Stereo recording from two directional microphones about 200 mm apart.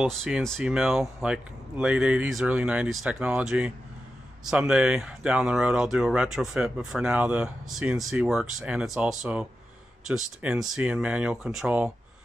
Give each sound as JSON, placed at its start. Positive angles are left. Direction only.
{"t": 0.0, "sound": "speech", "side_deg": 0}